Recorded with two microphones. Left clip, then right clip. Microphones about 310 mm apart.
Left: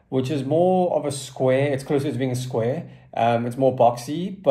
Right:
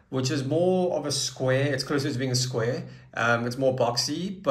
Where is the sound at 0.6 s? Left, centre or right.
Centre.